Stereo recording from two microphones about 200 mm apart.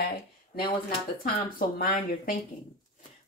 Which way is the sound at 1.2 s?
45° left (ahead or behind).